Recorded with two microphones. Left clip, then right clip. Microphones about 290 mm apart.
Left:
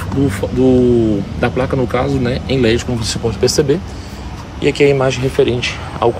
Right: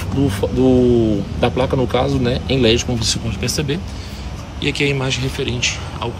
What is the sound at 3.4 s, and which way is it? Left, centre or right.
Speech, centre.